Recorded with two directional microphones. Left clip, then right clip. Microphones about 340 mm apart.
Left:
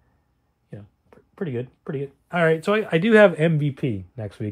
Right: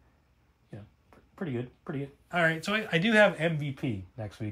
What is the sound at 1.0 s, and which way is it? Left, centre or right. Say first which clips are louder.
Speech: left 7 dB; left.